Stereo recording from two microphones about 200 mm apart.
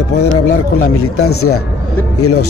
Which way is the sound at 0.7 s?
90° left.